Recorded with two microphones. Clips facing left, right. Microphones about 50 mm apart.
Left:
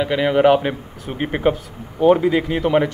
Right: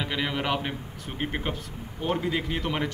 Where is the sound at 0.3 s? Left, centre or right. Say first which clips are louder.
Left 14 dB; left.